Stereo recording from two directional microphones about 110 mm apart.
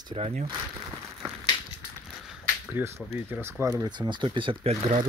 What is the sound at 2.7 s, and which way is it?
Speech, 20° right (ahead or behind).